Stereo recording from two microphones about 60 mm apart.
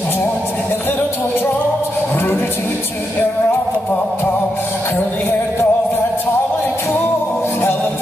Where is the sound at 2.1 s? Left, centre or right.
Left.